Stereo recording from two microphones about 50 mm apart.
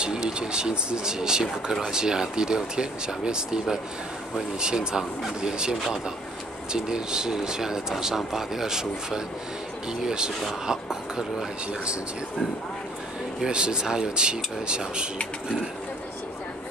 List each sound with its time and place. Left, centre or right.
0.0 s speech: centre
13.5 s speech: centre